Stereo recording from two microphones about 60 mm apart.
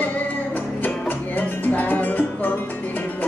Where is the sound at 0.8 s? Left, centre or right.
Left.